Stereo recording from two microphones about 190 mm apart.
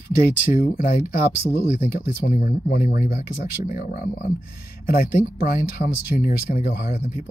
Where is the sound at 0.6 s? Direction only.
50° left (ahead or behind).